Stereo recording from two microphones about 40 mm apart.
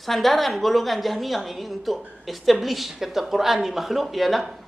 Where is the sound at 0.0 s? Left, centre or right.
Centre.